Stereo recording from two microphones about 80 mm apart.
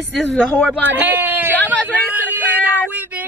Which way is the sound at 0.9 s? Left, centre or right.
Right.